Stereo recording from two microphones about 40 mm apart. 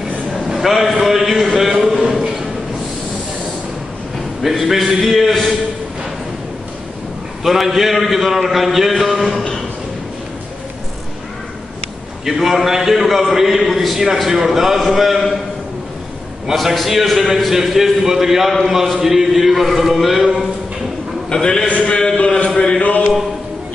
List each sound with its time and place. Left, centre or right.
0.6 s a man's voice: centre
1.0 s a sound: centre
4.4 s speech: centre
7.4 s a man's voice: centre
12.3 s a man's voice: centre
16.5 s a man's voice: centre
21.3 s a man's voice: centre
22.6 s mantra: left